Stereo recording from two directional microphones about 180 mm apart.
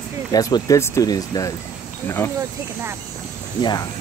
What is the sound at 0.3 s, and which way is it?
Speech, 20° left (ahead or behind).